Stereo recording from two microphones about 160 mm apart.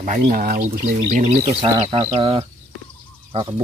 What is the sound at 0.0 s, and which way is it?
Speech, 50° right (ahead or behind).